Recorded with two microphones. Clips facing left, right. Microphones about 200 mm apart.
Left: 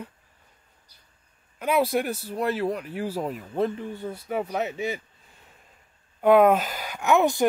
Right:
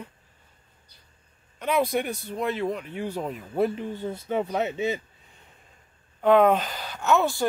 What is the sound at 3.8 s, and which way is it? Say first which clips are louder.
Speech: right 2 dB; 20° right (ahead or behind).